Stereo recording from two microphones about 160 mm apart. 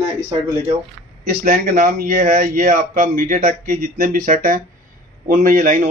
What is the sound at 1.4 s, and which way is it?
Speech, 55° right (ahead or behind).